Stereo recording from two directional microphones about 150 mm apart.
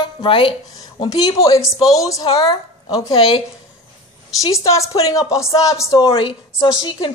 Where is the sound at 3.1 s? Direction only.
40° left (ahead or behind).